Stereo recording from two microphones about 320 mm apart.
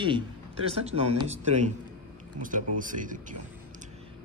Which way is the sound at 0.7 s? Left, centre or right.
Centre.